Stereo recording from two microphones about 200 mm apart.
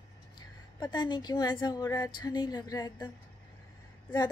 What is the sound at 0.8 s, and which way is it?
A woman's voice, 20° left (ahead or behind).